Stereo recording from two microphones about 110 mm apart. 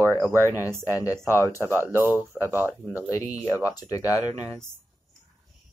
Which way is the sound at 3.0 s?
30° left (ahead or behind).